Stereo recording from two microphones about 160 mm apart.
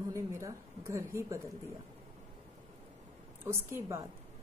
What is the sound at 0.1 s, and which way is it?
A woman's voice, 20° right (ahead or behind).